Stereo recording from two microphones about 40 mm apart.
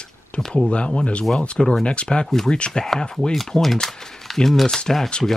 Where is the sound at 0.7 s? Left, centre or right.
Left.